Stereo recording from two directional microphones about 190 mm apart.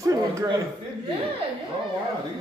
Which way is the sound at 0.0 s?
15° right (ahead or behind).